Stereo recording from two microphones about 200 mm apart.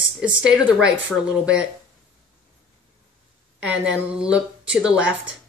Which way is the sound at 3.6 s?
5° right (ahead or behind).